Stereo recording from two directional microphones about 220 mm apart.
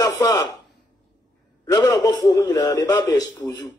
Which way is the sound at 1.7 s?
15° left (ahead or behind).